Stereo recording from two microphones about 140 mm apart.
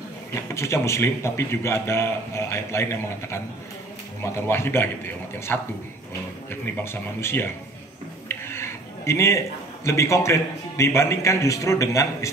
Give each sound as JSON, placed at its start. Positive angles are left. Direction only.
{"t": 0.3, "sound": "a man's voice", "side_deg": 20}
{"t": 8.3, "sound": "a sound", "side_deg": 15}
{"t": 9.8, "sound": "a man's voice", "side_deg": 20}